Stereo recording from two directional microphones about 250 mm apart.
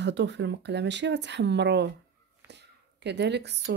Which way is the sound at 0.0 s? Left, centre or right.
Right.